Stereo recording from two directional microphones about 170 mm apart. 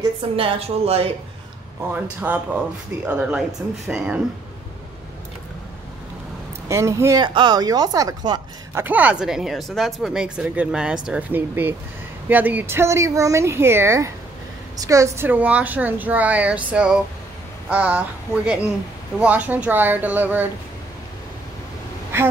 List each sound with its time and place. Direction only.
0.0 s a woman's voice: 30° right (ahead or behind)
1.9 s speech: 10° right (ahead or behind)
6.7 s speech: 15° right (ahead or behind)
8.8 s speech: 10° right (ahead or behind)
22.1 s speech: 15° right (ahead or behind)